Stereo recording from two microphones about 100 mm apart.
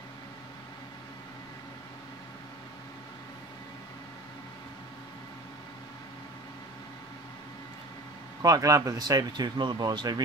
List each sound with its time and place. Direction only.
8.4 s speech: 35° right (ahead or behind)